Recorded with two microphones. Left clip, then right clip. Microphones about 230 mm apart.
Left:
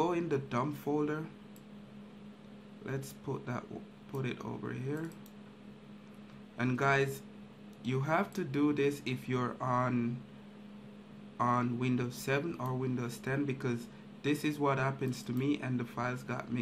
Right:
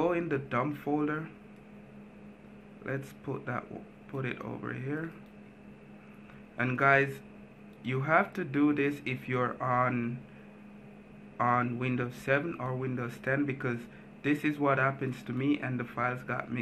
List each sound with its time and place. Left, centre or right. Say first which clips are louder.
0.0 s speech: right 2 dB; centre
2.8 s speech: right 4 dB; centre
6.5 s speech: right 5 dB; centre
11.3 s speech: right 3 dB; centre